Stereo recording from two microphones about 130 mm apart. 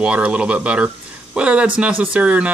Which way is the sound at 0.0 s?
10° right (ahead or behind).